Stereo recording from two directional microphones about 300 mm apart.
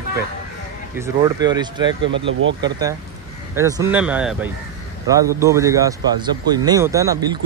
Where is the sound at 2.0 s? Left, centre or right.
Right.